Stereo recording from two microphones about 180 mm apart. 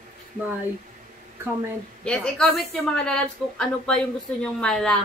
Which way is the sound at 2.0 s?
5° left (ahead or behind).